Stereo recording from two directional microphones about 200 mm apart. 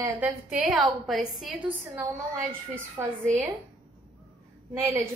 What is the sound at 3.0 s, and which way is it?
Speech, 15° right (ahead or behind).